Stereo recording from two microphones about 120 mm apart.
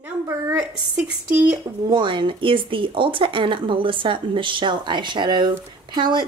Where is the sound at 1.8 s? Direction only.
40° right (ahead or behind).